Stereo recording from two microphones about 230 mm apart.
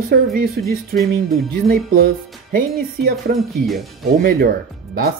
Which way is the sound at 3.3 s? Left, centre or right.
Right.